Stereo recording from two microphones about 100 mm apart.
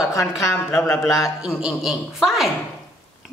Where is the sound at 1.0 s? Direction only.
5° right (ahead or behind).